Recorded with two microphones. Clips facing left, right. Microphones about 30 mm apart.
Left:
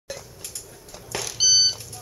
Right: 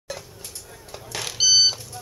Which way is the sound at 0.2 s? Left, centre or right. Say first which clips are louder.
Even; right.